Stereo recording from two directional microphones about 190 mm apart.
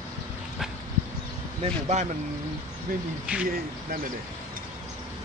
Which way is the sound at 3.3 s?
5° right (ahead or behind).